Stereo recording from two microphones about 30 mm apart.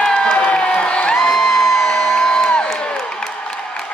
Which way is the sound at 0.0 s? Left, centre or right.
Left.